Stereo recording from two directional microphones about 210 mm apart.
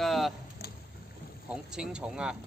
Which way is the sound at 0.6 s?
50° left (ahead or behind).